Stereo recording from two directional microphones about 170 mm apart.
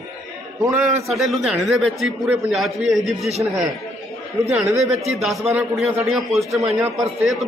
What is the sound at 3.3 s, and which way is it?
Speech, 40° right (ahead or behind).